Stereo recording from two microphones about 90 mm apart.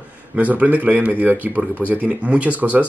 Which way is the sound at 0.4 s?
15° right (ahead or behind).